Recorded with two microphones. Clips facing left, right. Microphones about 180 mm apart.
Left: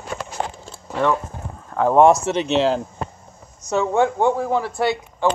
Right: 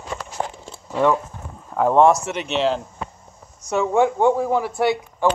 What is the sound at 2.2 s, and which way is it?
Speech, 35° left (ahead or behind).